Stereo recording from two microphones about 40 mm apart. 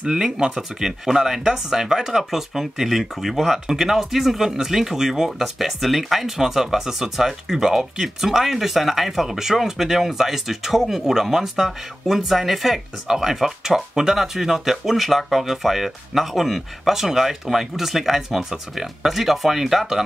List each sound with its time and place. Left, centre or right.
0.0 s speech: right
0.6 s speech: centre